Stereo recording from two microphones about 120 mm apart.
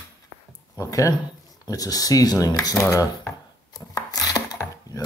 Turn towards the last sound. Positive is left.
turn(degrees=35)  # may be behind; listen again after turning